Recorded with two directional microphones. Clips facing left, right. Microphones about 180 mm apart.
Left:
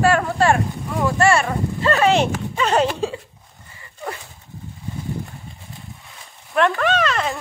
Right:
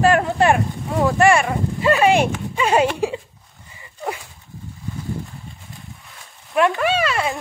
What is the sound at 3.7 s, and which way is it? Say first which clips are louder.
Dog: right 3 dB; 15° right (ahead or behind).